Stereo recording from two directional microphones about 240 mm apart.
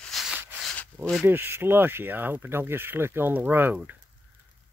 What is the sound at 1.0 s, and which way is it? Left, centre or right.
Speech, centre.